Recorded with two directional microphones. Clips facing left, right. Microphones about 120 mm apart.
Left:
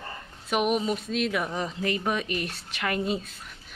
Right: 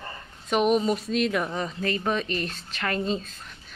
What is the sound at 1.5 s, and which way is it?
Speech, 15° left (ahead or behind).